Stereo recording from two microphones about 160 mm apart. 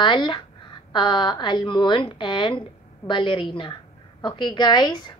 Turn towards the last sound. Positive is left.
turn(degrees=25)  # may be behind; listen again after turning